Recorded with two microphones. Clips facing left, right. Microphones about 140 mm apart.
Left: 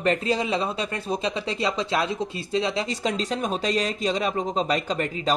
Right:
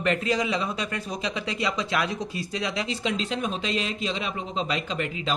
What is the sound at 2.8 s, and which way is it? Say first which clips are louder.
Speech: left 2 dB; 40° left (ahead or behind).